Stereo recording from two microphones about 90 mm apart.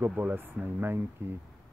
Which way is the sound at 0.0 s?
20° right (ahead or behind).